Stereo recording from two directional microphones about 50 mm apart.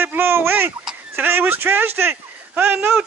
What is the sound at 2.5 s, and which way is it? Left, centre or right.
Speech, right.